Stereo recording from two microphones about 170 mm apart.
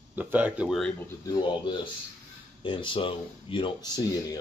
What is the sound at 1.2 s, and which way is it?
Speech, 25° left (ahead or behind).